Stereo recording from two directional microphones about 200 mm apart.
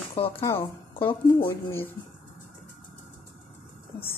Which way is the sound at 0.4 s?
15° left (ahead or behind).